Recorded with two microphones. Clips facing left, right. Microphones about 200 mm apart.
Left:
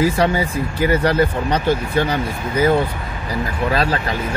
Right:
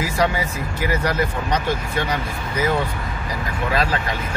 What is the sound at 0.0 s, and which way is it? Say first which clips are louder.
Speech: left 5 dB; 30° left (ahead or behind).